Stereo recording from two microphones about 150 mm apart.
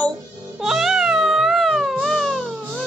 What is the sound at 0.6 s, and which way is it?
Cat, 5° right (ahead or behind).